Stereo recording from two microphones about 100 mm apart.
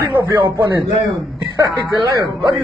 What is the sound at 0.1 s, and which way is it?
Speech, 20° right (ahead or behind).